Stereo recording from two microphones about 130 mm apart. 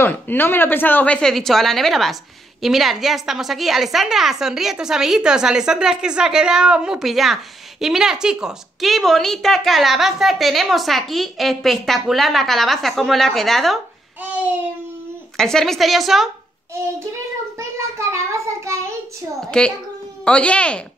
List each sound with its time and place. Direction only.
0.0 s a woman's voice: 15° left (ahead or behind)
15.3 s a woman's voice: 5° left (ahead or behind)
17.6 s child singing: 20° right (ahead or behind)
19.6 s a woman's voice: 5° left (ahead or behind)